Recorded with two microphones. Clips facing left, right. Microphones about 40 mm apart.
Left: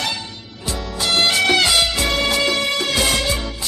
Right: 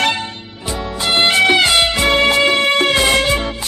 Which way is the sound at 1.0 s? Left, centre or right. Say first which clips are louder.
Right 4 dB; right.